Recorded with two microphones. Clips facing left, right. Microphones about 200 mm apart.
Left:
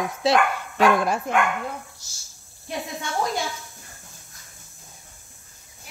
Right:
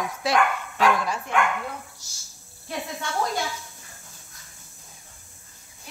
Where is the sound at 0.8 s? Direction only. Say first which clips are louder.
Left 4 dB; 55° left (ahead or behind).